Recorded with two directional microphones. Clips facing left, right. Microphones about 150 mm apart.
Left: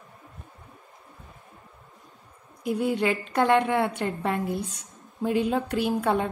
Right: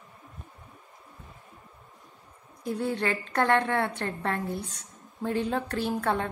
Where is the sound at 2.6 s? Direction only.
15° left (ahead or behind).